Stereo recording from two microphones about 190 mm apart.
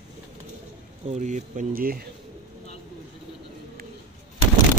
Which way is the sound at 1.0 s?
40° right (ahead or behind).